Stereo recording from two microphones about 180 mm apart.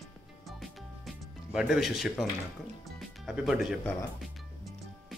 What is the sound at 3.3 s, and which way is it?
Speech, centre (ahead or behind).